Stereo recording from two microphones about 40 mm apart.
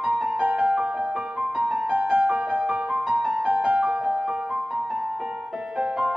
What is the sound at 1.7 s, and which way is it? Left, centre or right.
Music, right.